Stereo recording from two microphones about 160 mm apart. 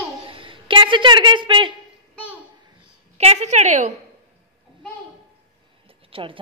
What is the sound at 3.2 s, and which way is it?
Speech, 45° right (ahead or behind).